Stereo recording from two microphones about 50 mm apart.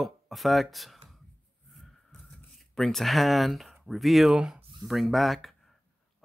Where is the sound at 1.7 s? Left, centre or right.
Centre.